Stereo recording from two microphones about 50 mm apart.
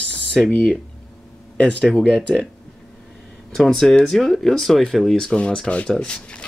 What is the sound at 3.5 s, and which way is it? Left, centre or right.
Speech, centre.